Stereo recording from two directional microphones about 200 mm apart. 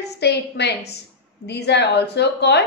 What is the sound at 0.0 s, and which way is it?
A woman's voice, 55° left (ahead or behind).